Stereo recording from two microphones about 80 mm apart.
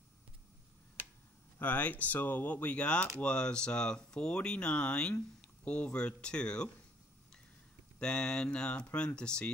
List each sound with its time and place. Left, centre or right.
1.6 s speech: centre
8.0 s speech: centre